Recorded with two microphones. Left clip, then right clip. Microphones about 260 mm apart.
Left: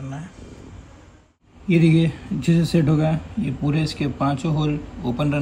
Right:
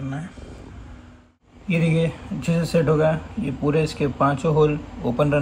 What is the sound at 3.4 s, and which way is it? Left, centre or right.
Speech, centre.